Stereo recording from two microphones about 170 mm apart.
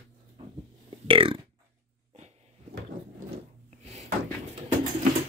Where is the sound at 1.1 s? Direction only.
30° right (ahead or behind).